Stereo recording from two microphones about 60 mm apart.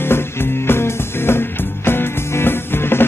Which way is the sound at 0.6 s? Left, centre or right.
Left.